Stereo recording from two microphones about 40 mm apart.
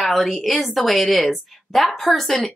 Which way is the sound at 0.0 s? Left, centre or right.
Centre.